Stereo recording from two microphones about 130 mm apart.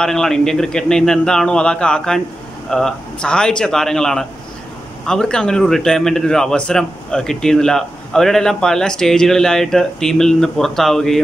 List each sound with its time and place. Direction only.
0.0 s a man's voice: 5° left (ahead or behind)